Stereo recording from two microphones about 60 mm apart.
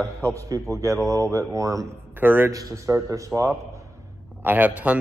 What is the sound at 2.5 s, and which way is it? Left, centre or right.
Speech, right.